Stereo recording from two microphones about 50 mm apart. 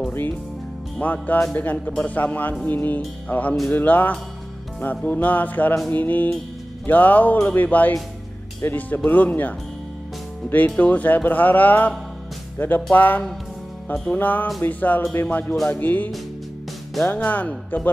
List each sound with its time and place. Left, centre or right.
1.0 s speech: left
10.5 s speech: left